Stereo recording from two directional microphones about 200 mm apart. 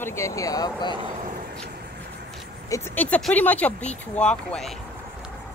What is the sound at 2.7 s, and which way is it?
Speech, 10° left (ahead or behind).